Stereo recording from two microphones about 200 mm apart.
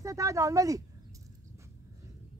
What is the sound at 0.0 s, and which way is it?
Speech, 15° right (ahead or behind).